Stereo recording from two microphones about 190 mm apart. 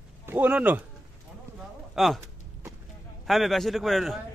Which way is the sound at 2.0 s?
Centre (ahead or behind).